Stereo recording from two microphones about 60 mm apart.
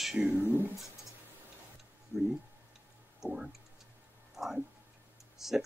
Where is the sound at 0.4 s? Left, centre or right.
Right.